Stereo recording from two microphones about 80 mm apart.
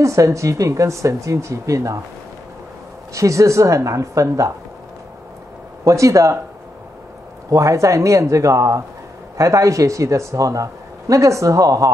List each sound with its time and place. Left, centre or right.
0.0 s speech: right
3.2 s speech: right
5.9 s speech: right
7.4 s speech: right